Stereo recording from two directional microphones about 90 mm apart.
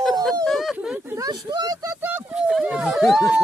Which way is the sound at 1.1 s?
45° right (ahead or behind).